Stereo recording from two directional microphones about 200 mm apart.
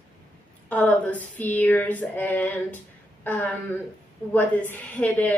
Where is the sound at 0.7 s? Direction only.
5° left (ahead or behind).